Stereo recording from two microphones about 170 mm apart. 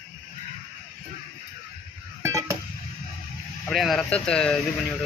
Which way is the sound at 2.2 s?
15° right (ahead or behind).